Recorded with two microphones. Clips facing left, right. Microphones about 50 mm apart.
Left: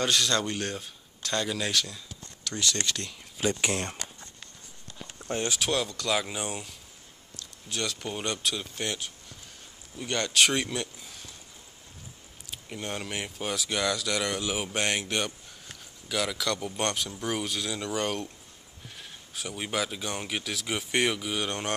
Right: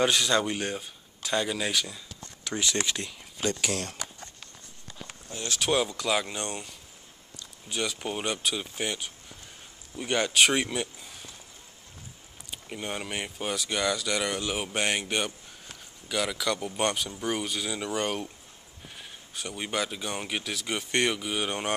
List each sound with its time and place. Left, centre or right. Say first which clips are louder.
0.0 s speech: right 2 dB; centre
2.4 s speech: right 1 dB; centre
3.6 s speech: left 2 dB; left
5.7 s speech: right 5 dB; centre
12.4 s speech: right 1 dB; centre